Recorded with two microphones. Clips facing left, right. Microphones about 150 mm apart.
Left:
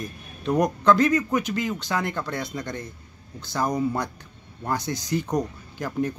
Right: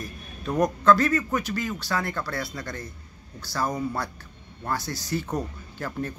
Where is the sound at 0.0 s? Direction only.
20° left (ahead or behind).